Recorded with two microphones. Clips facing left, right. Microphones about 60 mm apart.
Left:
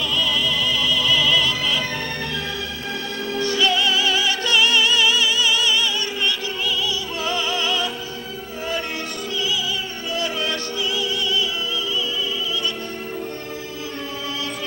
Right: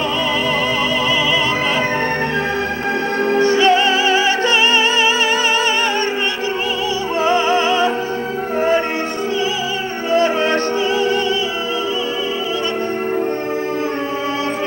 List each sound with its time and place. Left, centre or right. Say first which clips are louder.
3.3 s music: right 8 dB; right
7.2 s music: right 10 dB; right
10.1 s music: right 10 dB; right